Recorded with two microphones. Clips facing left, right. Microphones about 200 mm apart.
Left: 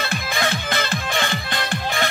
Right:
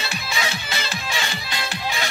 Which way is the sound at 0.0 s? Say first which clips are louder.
Left 4 dB; 55° left (ahead or behind).